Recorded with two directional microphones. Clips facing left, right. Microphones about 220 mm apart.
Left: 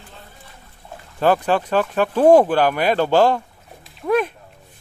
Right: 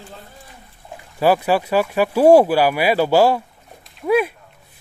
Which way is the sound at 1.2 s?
10° right (ahead or behind).